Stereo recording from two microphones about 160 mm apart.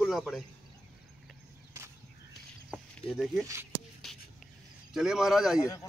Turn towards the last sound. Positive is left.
turn(degrees=20)  # may be behind; listen again after turning